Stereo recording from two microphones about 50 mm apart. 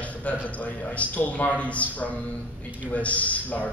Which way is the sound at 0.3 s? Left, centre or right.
Left.